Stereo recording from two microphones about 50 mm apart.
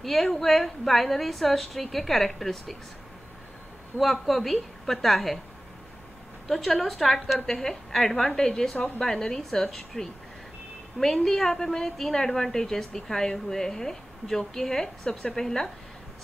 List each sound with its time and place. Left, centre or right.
0.0 s a woman's voice: centre
4.0 s a woman's voice: centre
6.4 s a woman's voice: centre
8.7 s a woman's voice: left
9.0 s a woman's voice: centre